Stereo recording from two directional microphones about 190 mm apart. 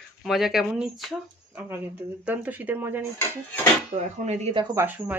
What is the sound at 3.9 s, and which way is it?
Speech, 35° right (ahead or behind).